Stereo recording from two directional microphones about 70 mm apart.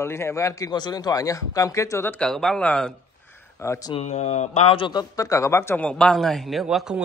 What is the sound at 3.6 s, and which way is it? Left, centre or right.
Speech, left.